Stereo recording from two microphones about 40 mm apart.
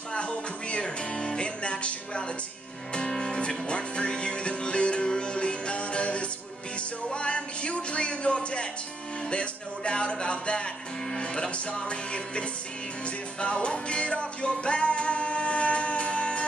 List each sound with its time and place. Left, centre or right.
0.1 s music: left